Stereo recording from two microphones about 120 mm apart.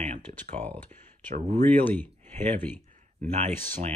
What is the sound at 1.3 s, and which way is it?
Speech, 70° right (ahead or behind).